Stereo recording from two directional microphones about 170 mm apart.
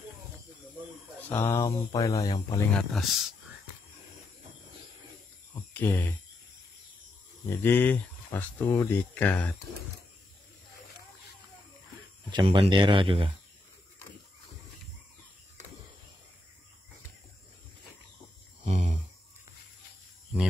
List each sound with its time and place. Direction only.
1.3 s speech: 15° left (ahead or behind)
2.9 s speech: centre (ahead or behind)
5.7 s speech: 10° left (ahead or behind)
7.4 s speech: 10° left (ahead or behind)
12.3 s speech: 30° right (ahead or behind)
18.6 s a sound: 45° right (ahead or behind)